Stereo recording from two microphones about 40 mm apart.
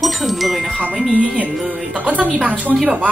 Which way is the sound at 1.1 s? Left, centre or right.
Right.